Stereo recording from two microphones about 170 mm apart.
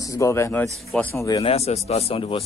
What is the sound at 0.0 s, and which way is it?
Speech, 20° left (ahead or behind).